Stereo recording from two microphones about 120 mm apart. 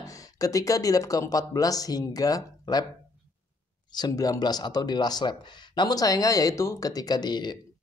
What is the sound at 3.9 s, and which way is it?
Speech, 30° left (ahead or behind).